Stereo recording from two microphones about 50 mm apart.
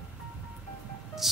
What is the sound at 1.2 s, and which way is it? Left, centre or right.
Music, centre.